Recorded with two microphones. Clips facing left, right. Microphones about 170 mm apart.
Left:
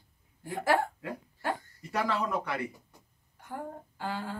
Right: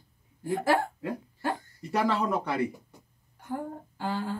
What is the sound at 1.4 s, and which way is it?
Speech, 30° right (ahead or behind).